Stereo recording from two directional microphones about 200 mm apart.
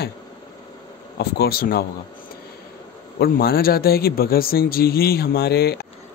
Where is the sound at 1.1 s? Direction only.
50° left (ahead or behind).